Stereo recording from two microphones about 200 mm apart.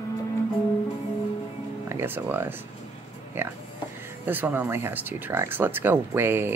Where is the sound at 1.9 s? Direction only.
10° right (ahead or behind).